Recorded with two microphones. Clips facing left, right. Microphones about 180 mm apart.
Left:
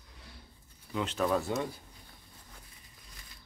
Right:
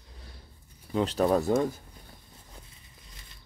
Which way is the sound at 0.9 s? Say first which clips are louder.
Right 6 dB; 35° right (ahead or behind).